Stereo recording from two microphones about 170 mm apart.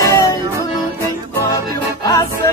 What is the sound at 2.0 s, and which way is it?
Music, 20° left (ahead or behind).